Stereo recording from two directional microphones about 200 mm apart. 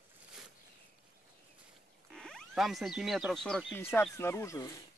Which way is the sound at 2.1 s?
Centre (ahead or behind).